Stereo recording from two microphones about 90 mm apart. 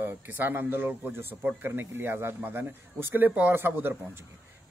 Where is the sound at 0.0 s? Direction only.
20° right (ahead or behind).